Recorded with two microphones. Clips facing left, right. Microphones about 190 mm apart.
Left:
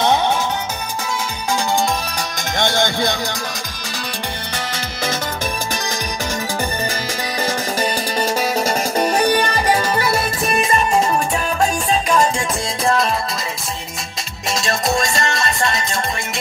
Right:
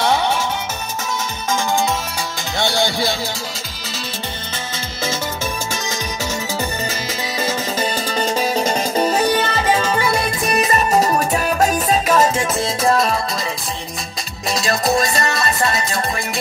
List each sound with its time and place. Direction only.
2.5 s music: 15° left (ahead or behind)
7.7 s music: 10° left (ahead or behind)
10.9 s music: 40° right (ahead or behind)
14.5 s music: centre (ahead or behind)